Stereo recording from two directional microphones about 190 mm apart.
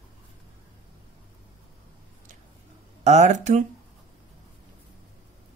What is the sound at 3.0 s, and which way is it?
Speech, 40° right (ahead or behind).